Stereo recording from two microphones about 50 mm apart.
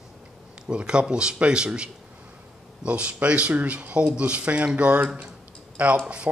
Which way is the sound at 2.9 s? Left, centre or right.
Right.